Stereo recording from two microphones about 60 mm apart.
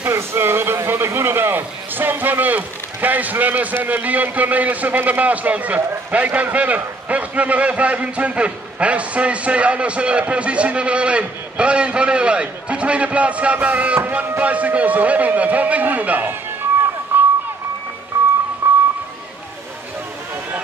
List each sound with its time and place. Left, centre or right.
0.1 s a man's voice: right
17.1 s run: right
18.6 s music: right